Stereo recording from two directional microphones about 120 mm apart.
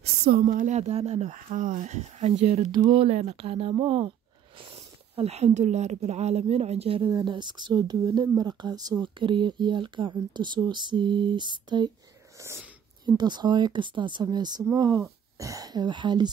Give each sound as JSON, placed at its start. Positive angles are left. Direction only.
{"t": 0.4, "sound": "speech", "side_deg": -85}
{"t": 2.3, "sound": "speech", "side_deg": -60}
{"t": 2.7, "sound": "speech", "side_deg": -45}
{"t": 3.1, "sound": "speech", "side_deg": -65}
{"t": 7.1, "sound": "speech", "side_deg": -35}
{"t": 12.4, "sound": "wheeze", "side_deg": -20}
{"t": 13.0, "sound": "speech", "side_deg": -35}
{"t": 14.6, "sound": "speech", "side_deg": -25}